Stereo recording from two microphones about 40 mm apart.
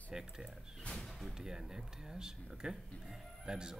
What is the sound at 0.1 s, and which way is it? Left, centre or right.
Music, centre.